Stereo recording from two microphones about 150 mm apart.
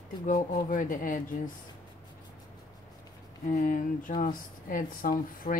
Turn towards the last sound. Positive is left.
turn(degrees=70)  # may be behind; listen again after turning